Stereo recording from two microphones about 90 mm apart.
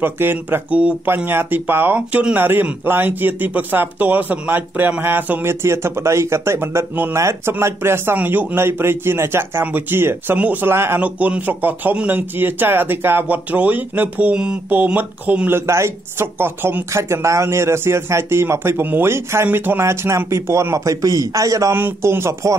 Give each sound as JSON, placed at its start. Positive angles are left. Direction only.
{"t": 0.0, "sound": "speech", "side_deg": -25}
{"t": 11.0, "sound": "speech", "side_deg": -15}
{"t": 15.6, "sound": "speech", "side_deg": -30}
{"t": 21.7, "sound": "speech", "side_deg": -25}